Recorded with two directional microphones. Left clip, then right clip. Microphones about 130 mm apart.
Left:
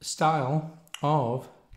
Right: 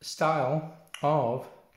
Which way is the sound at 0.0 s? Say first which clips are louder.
Left 1 dB; 35° left (ahead or behind).